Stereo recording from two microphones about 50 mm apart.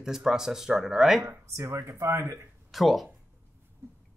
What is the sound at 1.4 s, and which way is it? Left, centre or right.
Speech, right.